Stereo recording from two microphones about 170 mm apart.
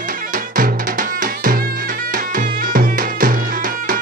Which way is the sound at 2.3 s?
55° right (ahead or behind).